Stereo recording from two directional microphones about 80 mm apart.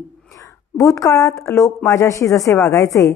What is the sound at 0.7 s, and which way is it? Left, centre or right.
A woman's voice, left.